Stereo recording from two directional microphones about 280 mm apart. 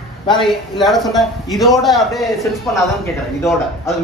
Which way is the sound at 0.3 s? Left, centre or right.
Centre.